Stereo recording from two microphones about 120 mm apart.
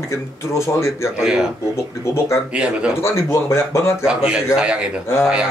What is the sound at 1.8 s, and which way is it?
Speech, 20° left (ahead or behind).